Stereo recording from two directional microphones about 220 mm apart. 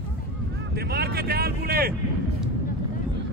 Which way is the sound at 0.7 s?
45° right (ahead or behind).